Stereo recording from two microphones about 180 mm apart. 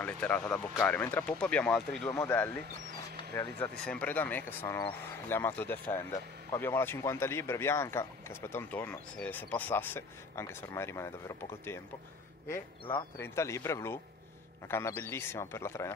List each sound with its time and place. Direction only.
0.0 s speech: 5° left (ahead or behind)
13.2 s speech: 15° left (ahead or behind)